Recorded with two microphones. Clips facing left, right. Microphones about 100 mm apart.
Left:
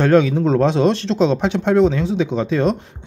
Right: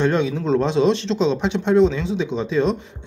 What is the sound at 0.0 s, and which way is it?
Speech, 50° left (ahead or behind).